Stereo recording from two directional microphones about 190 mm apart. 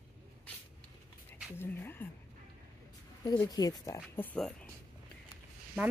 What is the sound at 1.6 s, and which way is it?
Speech, 10° left (ahead or behind).